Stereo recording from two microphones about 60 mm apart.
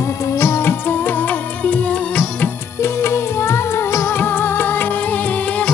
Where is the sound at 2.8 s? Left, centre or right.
Left.